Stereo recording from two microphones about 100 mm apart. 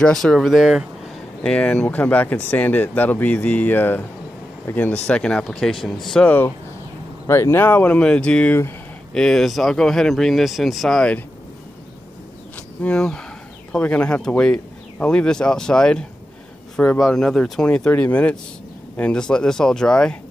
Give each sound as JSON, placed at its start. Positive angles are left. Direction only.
{"t": 0.0, "sound": "speech", "side_deg": 5}
{"t": 1.4, "sound": "speech", "side_deg": 10}
{"t": 6.2, "sound": "speech", "side_deg": 20}
{"t": 12.5, "sound": "insect", "side_deg": 10}
{"t": 13.7, "sound": "speech", "side_deg": 15}